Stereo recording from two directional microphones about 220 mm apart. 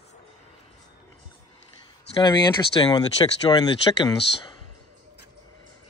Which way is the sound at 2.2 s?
20° left (ahead or behind).